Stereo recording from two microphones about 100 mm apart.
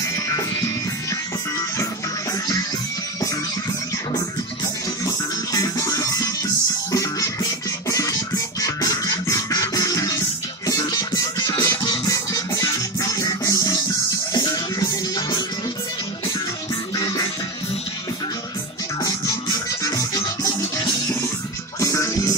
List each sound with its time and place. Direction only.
0.0 s music: 30° left (ahead or behind)
5.0 s music: 40° left (ahead or behind)
11.7 s music: 50° left (ahead or behind)
12.1 s music: 35° left (ahead or behind)
17.0 s music: 50° left (ahead or behind)
19.0 s music: 35° left (ahead or behind)